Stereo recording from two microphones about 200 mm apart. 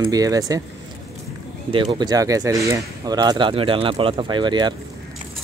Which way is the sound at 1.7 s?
25° right (ahead or behind).